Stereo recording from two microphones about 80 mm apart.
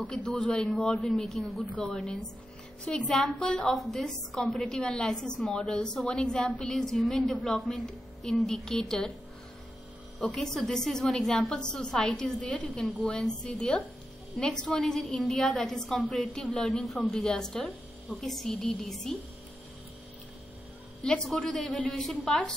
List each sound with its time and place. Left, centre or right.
0.0 s a woman's voice: centre
1.7 s a woman's voice: centre
10.2 s a woman's voice: centre
21.0 s a woman's voice: centre